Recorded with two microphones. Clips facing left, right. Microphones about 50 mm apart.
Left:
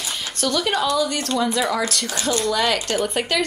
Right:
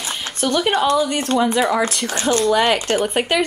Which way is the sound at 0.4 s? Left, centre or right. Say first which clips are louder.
Right 4 dB; right.